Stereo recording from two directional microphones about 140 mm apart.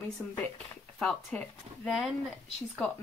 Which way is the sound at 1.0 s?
5° left (ahead or behind).